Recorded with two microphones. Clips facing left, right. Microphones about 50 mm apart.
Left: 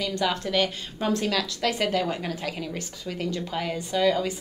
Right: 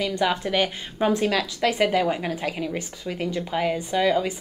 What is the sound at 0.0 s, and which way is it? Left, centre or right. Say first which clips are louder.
A woman's voice: right 3 dB; centre.